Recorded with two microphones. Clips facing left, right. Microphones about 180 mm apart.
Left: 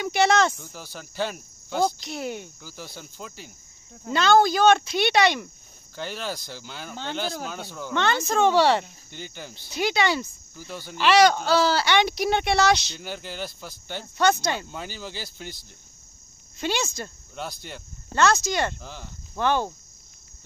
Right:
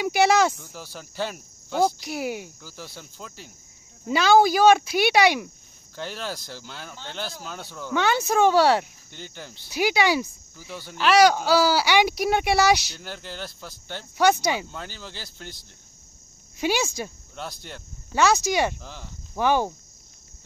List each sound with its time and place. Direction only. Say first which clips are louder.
0.0 s speech: right 1 dB; 5° right (ahead or behind)
4.1 s speech: right 1 dB; 10° right (ahead or behind)
9.7 s speech: right 2 dB; 10° right (ahead or behind)
13.0 s speech: left 2 dB; 5° left (ahead or behind)
14.1 s speech: right 2 dB; 10° right (ahead or behind)
14.7 s speech: left 2 dB; 10° left (ahead or behind)
16.5 s speech: right 3 dB; 10° right (ahead or behind)
17.4 s speech: left 1 dB; centre (ahead or behind)
18.1 s speech: right 1 dB; 10° right (ahead or behind)
18.8 s speech: left 1 dB; centre (ahead or behind)
19.3 s speech: right 2 dB; 10° right (ahead or behind)